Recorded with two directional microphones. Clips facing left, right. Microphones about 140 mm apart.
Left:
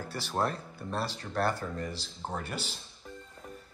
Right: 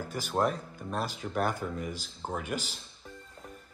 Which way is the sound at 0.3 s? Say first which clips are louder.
Right 3 dB; centre (ahead or behind).